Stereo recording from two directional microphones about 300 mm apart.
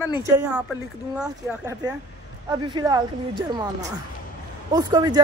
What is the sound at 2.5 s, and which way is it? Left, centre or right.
Speech, centre.